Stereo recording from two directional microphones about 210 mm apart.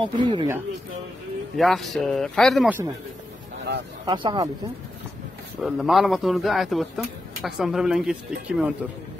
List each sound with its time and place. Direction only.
0.0 s speech: 25° right (ahead or behind)
1.6 s speech: centre (ahead or behind)
4.0 s speech: 20° right (ahead or behind)
5.6 s speech: centre (ahead or behind)